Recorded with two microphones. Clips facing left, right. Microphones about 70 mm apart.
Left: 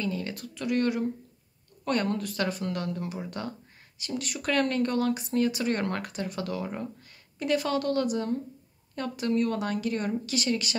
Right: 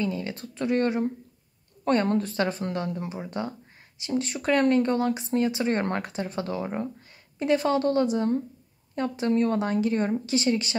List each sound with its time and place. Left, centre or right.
0.0 s speech: right